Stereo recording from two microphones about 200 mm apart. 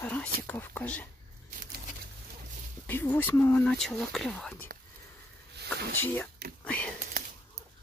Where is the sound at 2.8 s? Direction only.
10° left (ahead or behind).